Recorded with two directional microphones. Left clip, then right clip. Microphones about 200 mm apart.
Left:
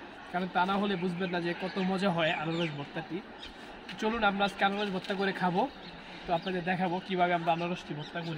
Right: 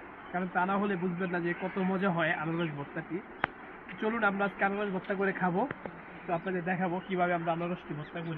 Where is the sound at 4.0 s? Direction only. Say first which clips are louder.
Left 1 dB; 20° left (ahead or behind).